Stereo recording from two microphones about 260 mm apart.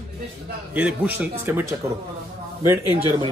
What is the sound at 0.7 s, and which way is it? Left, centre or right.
A man's voice, centre.